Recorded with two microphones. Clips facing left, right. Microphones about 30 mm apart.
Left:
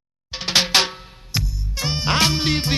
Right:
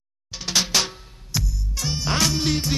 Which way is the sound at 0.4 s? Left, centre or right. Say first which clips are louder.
Left 4 dB; left.